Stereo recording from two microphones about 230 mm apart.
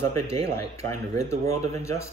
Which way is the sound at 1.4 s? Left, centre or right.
Right.